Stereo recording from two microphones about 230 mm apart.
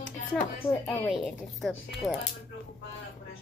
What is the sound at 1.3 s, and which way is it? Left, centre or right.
Speech, centre.